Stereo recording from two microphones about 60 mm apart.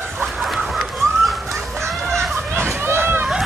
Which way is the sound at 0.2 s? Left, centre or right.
Centre.